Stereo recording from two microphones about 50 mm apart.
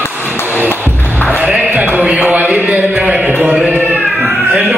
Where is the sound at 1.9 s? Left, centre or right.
Right.